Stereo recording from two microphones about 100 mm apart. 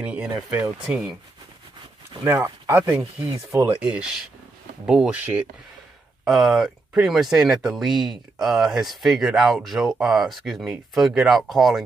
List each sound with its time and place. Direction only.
0.0 s speech: 10° right (ahead or behind)
2.2 s speech: 20° right (ahead or behind)
3.8 s speech: 10° right (ahead or behind)
6.2 s speech: centre (ahead or behind)